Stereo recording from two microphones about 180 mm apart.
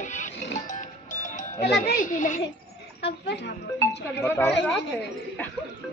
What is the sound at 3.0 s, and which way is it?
Speech, 70° left (ahead or behind).